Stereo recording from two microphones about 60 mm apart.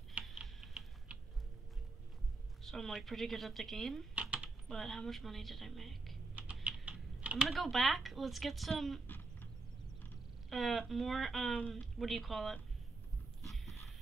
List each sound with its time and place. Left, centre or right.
0.2 s typing: right
2.6 s speech: centre
4.1 s typing: right
4.6 s speech: centre
6.3 s typing: right
7.4 s speech: centre
9.0 s a sound: left
10.5 s speech: centre
13.4 s a sound: centre